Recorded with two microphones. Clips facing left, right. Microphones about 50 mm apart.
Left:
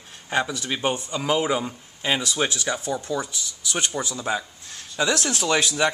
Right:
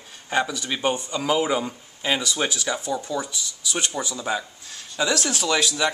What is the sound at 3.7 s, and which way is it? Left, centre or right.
Speech, left.